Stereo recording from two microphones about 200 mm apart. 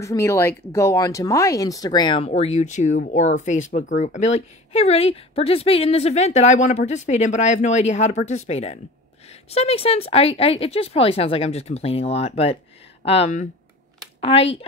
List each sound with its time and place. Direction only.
0.0 s speech: 15° left (ahead or behind); by 14.7 s 30° left (ahead or behind)